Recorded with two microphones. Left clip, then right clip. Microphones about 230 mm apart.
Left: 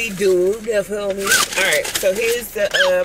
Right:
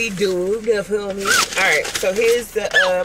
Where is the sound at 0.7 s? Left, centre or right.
Centre.